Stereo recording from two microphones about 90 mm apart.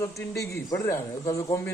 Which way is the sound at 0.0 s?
30° left (ahead or behind).